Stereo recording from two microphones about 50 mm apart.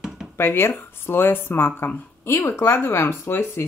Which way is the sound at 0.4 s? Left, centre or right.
Left.